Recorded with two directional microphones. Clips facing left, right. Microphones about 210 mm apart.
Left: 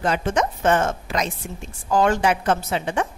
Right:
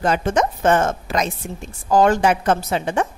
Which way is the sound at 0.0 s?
45° right (ahead or behind).